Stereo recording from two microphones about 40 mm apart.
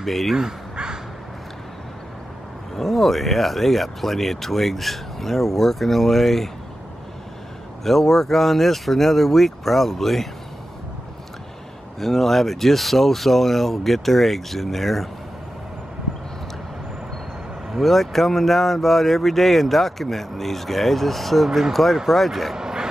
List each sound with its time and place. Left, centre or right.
0.0 s speech: centre
0.4 s crow: centre
2.7 s speech: centre
7.8 s speech: centre
12.0 s speech: centre
17.6 s speech: centre
22.6 s dog: centre